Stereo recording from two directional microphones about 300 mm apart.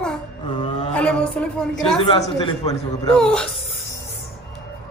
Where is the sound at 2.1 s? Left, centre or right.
Centre.